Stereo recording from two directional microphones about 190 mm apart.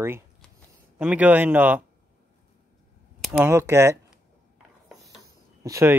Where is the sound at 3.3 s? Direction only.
15° right (ahead or behind).